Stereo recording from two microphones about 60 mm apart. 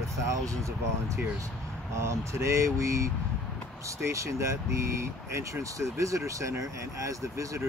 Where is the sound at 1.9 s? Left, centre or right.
Right.